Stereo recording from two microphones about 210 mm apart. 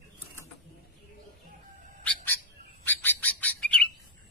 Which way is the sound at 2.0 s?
10° left (ahead or behind).